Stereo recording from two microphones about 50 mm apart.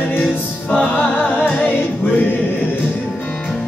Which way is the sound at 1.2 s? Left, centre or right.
Left.